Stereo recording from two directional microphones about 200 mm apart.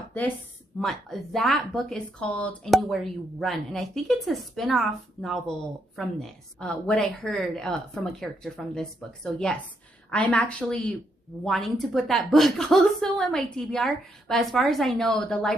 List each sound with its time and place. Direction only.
0.7 s speech: centre (ahead or behind)